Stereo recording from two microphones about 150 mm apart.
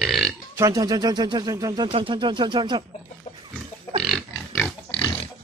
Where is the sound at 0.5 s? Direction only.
20° right (ahead or behind).